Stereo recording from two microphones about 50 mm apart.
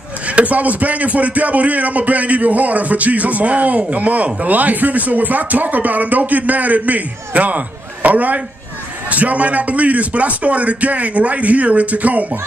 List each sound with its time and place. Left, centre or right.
0.3 s speech: right